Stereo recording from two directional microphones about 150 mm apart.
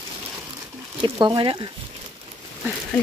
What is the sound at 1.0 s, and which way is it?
Speech, 30° right (ahead or behind).